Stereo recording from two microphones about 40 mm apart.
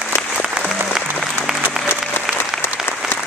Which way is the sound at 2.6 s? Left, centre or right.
Left.